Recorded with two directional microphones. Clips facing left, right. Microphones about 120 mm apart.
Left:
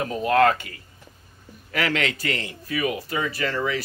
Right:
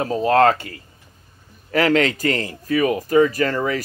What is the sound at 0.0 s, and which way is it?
Speech, 30° right (ahead or behind).